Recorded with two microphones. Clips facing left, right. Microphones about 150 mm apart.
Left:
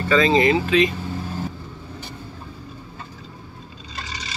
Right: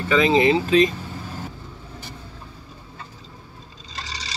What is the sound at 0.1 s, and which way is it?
Speech, 15° right (ahead or behind).